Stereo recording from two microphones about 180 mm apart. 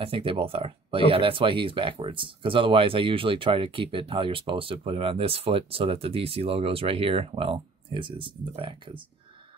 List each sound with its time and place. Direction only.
0.0 s speech: 30° right (ahead or behind)